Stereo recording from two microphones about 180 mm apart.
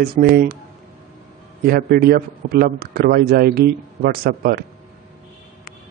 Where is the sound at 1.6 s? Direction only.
60° right (ahead or behind).